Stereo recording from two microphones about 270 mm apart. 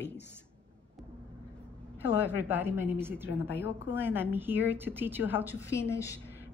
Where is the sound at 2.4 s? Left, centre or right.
Centre.